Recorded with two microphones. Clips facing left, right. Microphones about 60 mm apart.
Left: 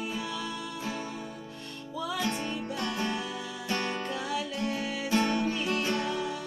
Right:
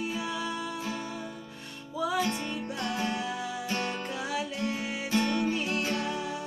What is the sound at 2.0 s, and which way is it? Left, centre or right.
Music, centre.